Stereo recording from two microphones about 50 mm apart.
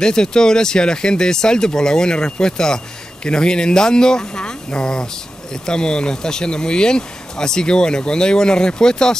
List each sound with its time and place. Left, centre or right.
0.0 s speech: centre